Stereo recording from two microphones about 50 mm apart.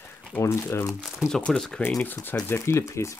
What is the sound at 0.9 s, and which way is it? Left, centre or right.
Speech, centre.